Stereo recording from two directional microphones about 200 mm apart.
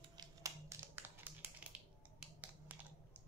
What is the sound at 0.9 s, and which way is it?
Finger snapping, 10° right (ahead or behind).